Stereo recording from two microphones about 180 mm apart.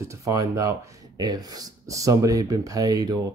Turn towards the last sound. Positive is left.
turn(degrees=-20)  # may be behind; listen again after turning